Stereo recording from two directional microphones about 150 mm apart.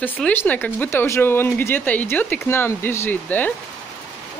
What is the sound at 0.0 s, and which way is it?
Speech, 10° left (ahead or behind).